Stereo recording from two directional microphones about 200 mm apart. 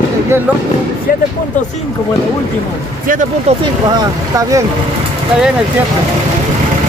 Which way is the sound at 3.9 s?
20° right (ahead or behind).